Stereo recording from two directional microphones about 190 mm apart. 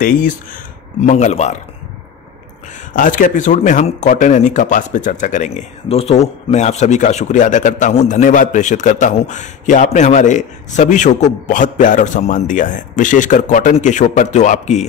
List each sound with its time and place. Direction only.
0.0 s speech: 45° left (ahead or behind)
2.9 s speech: 45° left (ahead or behind)